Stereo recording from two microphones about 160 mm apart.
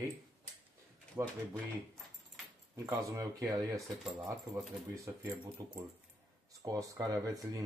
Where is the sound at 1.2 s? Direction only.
20° right (ahead or behind).